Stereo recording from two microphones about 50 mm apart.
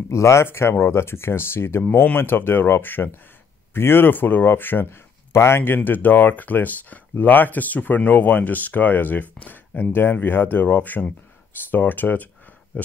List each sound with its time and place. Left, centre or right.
0.1 s speech: left
4.8 s speech: left
5.9 s speech: left